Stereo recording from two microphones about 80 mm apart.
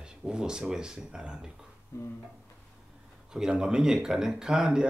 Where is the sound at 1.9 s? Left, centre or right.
Left.